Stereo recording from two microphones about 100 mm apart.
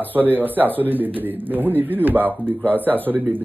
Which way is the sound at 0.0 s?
20° right (ahead or behind).